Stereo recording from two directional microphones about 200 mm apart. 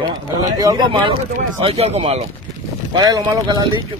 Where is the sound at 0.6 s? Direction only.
20° right (ahead or behind).